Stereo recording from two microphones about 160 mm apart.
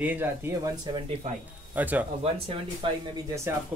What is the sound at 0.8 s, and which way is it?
Speech, 30° right (ahead or behind).